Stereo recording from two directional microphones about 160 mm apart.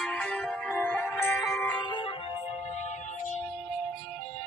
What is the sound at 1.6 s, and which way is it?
Music, 25° left (ahead or behind).